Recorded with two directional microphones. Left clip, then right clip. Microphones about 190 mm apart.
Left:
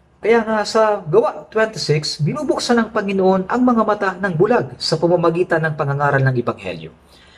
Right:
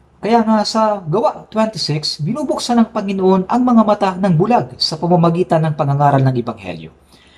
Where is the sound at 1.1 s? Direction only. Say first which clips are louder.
Left 1 dB; 15° right (ahead or behind).